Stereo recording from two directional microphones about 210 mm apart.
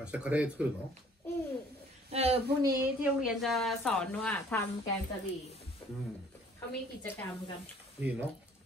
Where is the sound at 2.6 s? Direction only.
15° right (ahead or behind).